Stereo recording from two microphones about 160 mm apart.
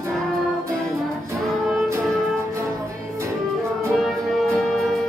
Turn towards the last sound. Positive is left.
turn(degrees=0)  # may be behind; listen again after turning